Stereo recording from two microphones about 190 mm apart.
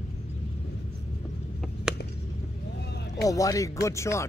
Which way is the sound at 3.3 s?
15° left (ahead or behind).